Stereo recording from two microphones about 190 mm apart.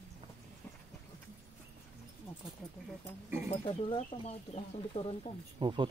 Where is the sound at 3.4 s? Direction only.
30° left (ahead or behind).